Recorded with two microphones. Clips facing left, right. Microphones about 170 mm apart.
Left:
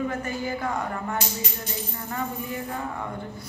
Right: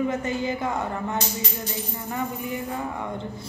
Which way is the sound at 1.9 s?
15° right (ahead or behind).